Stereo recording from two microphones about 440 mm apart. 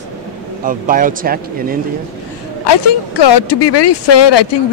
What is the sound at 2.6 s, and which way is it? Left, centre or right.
Speech, left.